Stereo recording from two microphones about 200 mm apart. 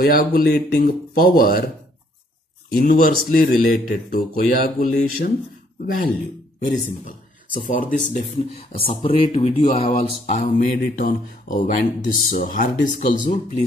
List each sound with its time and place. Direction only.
0.0 s speech: 45° left (ahead or behind)
2.7 s speech: 45° left (ahead or behind)
6.7 s speech: 45° left (ahead or behind)